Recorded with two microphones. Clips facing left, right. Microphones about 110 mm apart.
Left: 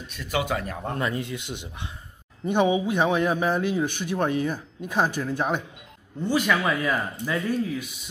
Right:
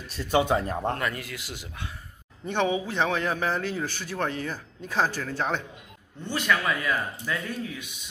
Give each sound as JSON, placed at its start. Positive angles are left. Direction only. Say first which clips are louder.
{"t": 0.1, "sound": "speech", "louder": "right 4 dB", "side_deg": -30}
{"t": 0.9, "sound": "speech", "louder": "left 3 dB", "side_deg": 20}